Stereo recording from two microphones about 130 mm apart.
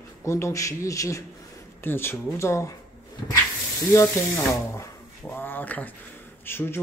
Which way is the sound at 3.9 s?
20° left (ahead or behind).